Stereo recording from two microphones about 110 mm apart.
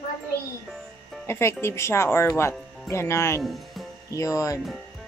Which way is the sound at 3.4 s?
Centre (ahead or behind).